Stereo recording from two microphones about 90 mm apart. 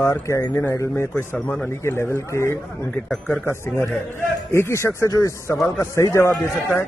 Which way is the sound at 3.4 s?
30° left (ahead or behind).